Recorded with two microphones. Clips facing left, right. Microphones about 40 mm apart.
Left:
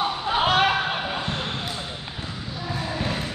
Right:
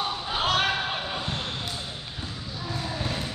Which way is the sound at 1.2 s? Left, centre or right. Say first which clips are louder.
Left 3 dB; left.